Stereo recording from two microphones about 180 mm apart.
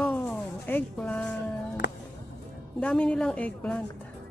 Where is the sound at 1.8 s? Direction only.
75° left (ahead or behind).